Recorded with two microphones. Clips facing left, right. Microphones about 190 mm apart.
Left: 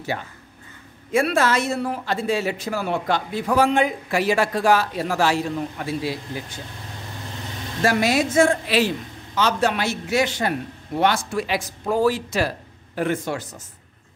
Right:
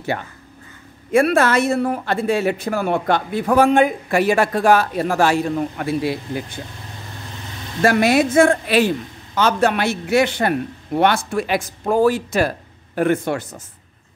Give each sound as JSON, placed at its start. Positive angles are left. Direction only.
{"t": 1.1, "sound": "a man's voice", "side_deg": -55}
{"t": 7.8, "sound": "a man's voice", "side_deg": -60}